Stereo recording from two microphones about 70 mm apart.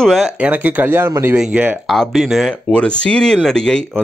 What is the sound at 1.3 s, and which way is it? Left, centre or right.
Speech, centre.